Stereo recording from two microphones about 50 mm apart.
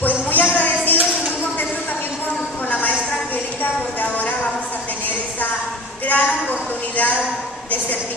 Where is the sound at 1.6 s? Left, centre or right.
Left.